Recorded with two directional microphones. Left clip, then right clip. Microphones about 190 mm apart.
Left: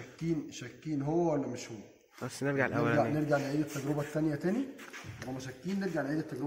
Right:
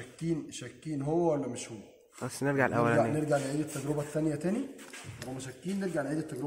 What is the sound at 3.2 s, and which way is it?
Speech, centre (ahead or behind).